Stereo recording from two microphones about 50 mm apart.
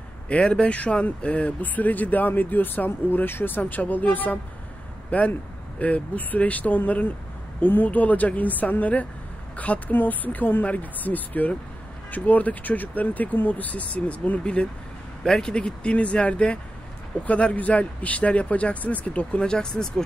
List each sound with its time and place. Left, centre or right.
0.3 s speech: left